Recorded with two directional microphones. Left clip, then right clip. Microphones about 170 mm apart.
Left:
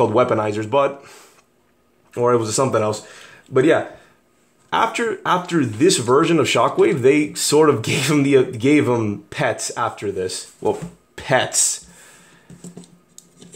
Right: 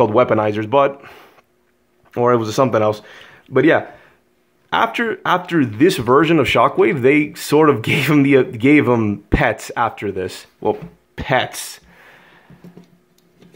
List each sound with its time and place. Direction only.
0.0 s speech: 20° right (ahead or behind)
4.6 s speech: 20° right (ahead or behind)
10.6 s a sound: 15° right (ahead or behind)